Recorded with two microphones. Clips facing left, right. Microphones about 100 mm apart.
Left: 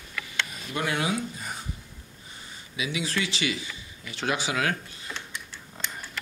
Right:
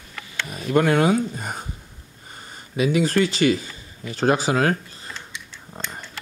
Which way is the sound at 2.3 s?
50° right (ahead or behind).